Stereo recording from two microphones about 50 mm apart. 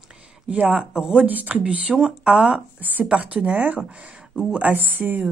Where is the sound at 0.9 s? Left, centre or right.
Centre.